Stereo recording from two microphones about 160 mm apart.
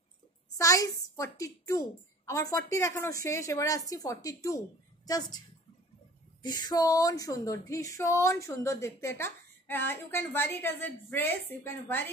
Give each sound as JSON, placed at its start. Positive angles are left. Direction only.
{"t": 0.6, "sound": "a woman's voice", "side_deg": 20}
{"t": 6.4, "sound": "speech", "side_deg": 25}